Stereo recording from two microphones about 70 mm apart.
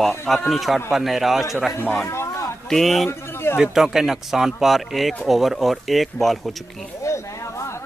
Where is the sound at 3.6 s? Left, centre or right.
Centre.